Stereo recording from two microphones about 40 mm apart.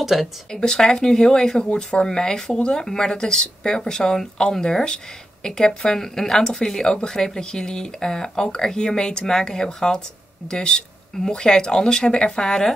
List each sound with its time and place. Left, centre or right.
0.0 s speech: centre
0.5 s speech: centre